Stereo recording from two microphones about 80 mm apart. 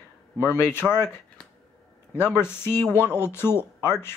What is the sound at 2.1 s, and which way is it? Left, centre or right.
Speech, left.